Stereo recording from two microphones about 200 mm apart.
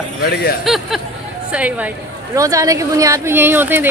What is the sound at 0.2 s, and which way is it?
Speech, 50° left (ahead or behind).